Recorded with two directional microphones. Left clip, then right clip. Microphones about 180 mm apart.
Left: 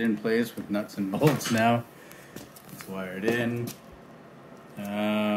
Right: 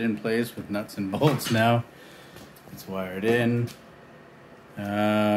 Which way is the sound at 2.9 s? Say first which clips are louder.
Right 4 dB; 30° right (ahead or behind).